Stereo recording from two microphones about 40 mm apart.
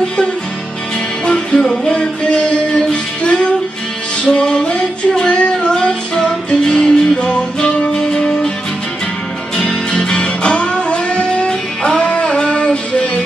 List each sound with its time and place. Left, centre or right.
1.2 s music: left
9.6 s music: left